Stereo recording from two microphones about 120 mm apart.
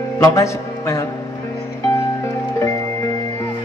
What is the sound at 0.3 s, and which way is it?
Music, 25° left (ahead or behind).